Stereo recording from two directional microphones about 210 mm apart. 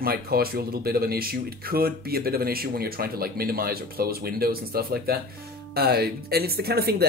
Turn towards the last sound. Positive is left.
turn(degrees=-50)  # may be behind; listen again after turning